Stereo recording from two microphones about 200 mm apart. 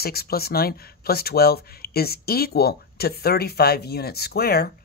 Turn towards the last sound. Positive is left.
turn(degrees=50)  # may be behind; listen again after turning